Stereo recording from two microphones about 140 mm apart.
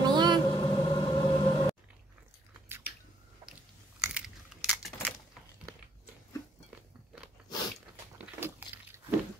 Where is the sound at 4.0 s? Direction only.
5° right (ahead or behind).